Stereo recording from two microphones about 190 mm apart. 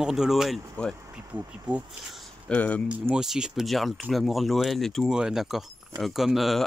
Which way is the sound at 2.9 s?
5° right (ahead or behind).